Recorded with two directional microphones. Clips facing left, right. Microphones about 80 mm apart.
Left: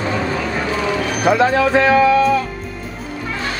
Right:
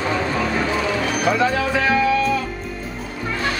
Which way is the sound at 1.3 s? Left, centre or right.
Left.